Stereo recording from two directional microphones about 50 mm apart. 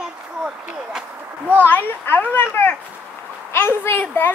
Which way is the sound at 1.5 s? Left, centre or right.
Left.